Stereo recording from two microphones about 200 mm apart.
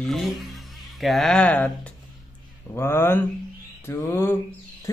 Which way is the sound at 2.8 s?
10° left (ahead or behind).